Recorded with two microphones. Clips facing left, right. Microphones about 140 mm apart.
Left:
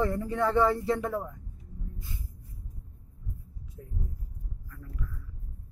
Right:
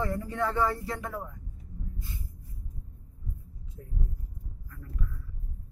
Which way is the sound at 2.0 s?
15° left (ahead or behind).